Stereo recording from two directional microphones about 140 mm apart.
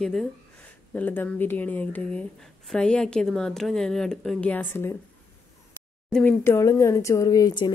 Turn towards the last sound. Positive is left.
turn(degrees=30)  # may be behind; listen again after turning